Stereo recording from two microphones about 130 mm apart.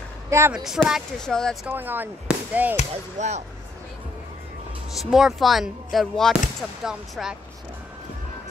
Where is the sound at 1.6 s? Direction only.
15° right (ahead or behind).